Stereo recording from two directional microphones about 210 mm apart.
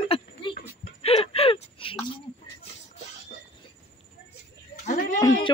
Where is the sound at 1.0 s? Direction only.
30° left (ahead or behind).